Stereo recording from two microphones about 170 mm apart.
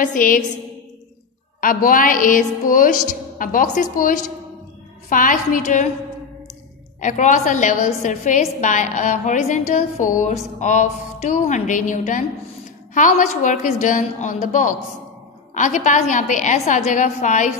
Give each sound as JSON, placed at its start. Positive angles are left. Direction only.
{"t": 0.0, "sound": "a woman's voice", "side_deg": 55}
{"t": 1.6, "sound": "a woman's voice", "side_deg": 55}
{"t": 7.0, "sound": "a woman's voice", "side_deg": 45}